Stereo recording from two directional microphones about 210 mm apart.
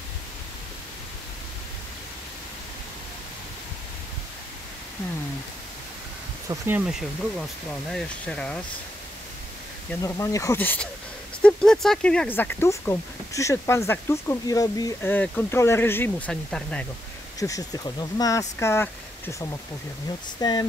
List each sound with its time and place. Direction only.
6.5 s speech: 10° right (ahead or behind)
6.9 s speech: centre (ahead or behind)
10.0 s speech: 15° left (ahead or behind)
17.4 s speech: 15° left (ahead or behind)
20.3 s speech: 20° left (ahead or behind)